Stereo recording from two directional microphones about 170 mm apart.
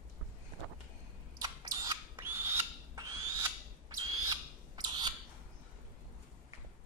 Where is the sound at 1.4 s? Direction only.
20° right (ahead or behind).